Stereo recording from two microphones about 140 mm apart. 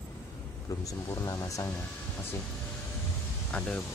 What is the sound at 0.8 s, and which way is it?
Speech, 25° left (ahead or behind).